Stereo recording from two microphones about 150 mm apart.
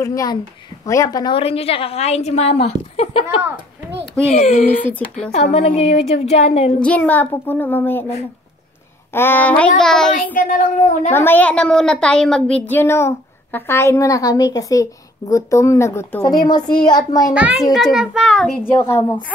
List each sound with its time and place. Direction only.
0.0 s a woman's voice: 25° left (ahead or behind)
1.3 s a woman's voice: 40° left (ahead or behind)
6.8 s a woman's voice: 10° left (ahead or behind)
9.1 s a woman's voice: 15° left (ahead or behind)
10.3 s speech: 65° left (ahead or behind)
11.1 s a woman's voice: 10° left (ahead or behind)
16.3 s a woman's voice: 25° left (ahead or behind)
17.3 s a child's voice: 10° right (ahead or behind)
18.7 s a woman's voice: 15° left (ahead or behind)